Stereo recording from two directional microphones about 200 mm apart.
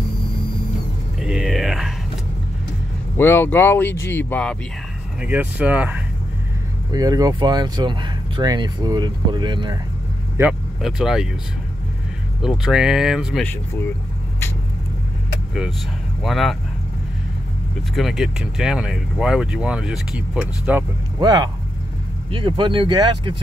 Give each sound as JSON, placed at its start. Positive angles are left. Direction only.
{"t": 1.2, "sound": "a sound", "side_deg": 0}
{"t": 3.2, "sound": "speech", "side_deg": 10}
{"t": 5.2, "sound": "speech", "side_deg": -10}
{"t": 6.9, "sound": "speech", "side_deg": -20}
{"t": 10.8, "sound": "speech", "side_deg": 0}
{"t": 12.4, "sound": "speech", "side_deg": -5}
{"t": 16.2, "sound": "speech", "side_deg": 0}
{"t": 17.9, "sound": "speech", "side_deg": 0}
{"t": 21.2, "sound": "speech", "side_deg": -20}